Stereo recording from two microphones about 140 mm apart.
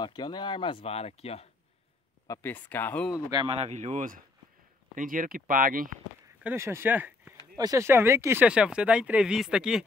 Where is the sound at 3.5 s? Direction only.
50° right (ahead or behind); by 5.9 s 85° right.